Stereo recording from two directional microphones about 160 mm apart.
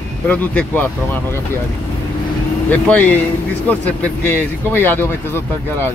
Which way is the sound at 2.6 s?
10° left (ahead or behind).